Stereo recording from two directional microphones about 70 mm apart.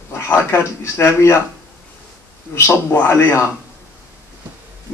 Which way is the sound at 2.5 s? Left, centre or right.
Left.